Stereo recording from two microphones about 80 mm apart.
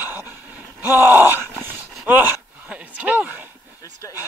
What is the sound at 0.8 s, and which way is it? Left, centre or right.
Groan, right.